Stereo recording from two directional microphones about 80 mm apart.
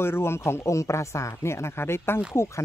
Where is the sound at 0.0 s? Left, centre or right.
Left.